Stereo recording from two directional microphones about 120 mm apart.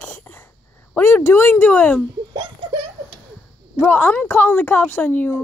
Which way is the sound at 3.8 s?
15° left (ahead or behind).